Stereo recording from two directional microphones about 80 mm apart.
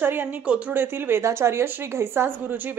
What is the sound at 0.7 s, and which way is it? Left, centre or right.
A woman's voice, right.